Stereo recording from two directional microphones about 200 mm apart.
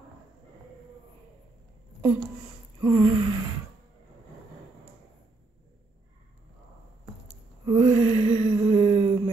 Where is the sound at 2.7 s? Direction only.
20° right (ahead or behind).